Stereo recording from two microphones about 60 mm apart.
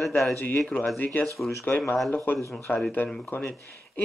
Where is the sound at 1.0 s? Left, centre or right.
Left.